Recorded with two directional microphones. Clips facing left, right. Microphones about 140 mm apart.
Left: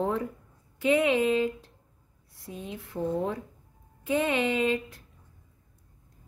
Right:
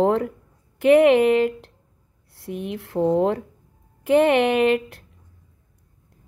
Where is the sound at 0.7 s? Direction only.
65° right (ahead or behind).